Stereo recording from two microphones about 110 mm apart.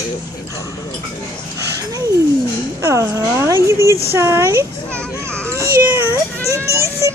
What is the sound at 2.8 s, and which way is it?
A woman's voice, 25° right (ahead or behind).